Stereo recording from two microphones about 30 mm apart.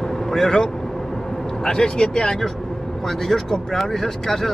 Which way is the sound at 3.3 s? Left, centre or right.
Centre.